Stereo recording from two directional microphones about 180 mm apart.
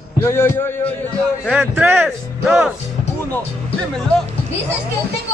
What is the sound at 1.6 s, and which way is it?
Speech, 10° right (ahead or behind).